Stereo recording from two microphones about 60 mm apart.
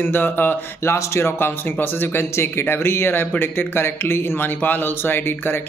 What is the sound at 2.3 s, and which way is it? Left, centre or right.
Speech, left.